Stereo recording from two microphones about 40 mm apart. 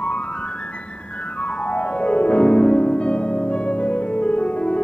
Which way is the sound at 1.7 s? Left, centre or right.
Left.